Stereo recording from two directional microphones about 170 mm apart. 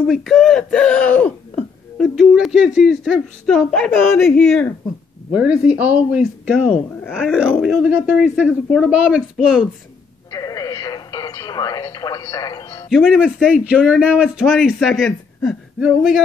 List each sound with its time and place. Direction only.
0.0 s speech: centre (ahead or behind)
5.6 s speech: 10° right (ahead or behind)
10.3 s speech: 20° left (ahead or behind)
12.9 s speech: centre (ahead or behind)